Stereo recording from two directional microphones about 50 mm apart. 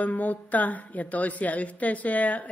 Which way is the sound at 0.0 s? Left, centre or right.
Left.